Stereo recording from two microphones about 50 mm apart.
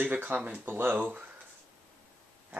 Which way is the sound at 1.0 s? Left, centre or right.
Right.